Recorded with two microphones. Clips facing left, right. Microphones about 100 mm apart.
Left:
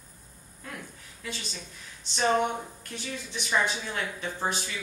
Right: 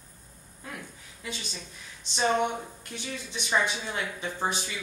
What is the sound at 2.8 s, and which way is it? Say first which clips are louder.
A woman's voice: even; 20° right (ahead or behind).